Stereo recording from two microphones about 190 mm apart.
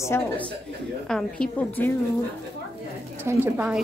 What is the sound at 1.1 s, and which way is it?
Speech, 5° left (ahead or behind).